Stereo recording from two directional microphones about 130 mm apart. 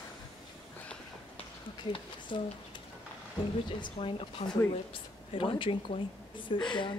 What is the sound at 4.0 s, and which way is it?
Speech, 45° left (ahead or behind).